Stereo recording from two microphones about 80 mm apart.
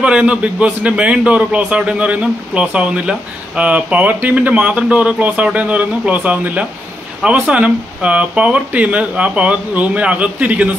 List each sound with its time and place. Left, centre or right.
0.0 s a man's voice: centre